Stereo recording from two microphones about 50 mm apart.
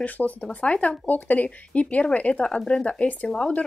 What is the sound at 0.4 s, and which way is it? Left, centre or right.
Speech, left.